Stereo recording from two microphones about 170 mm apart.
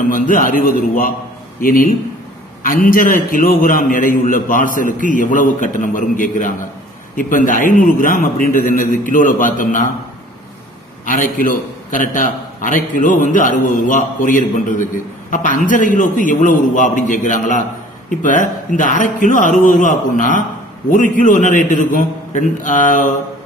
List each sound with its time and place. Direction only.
0.1 s a man's voice: 55° left (ahead or behind)
11.1 s a man's voice: 50° left (ahead or behind)